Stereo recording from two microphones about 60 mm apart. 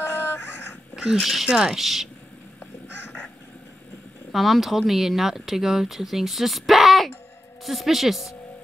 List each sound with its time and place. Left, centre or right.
0.0 s a sound: left
0.9 s speech: centre
4.3 s speech: centre